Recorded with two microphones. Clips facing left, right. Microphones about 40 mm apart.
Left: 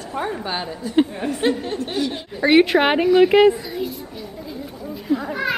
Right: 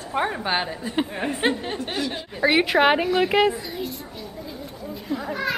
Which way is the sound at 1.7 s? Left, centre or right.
Centre.